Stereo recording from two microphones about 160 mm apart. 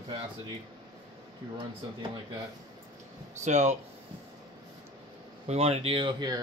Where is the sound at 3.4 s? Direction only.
45° right (ahead or behind).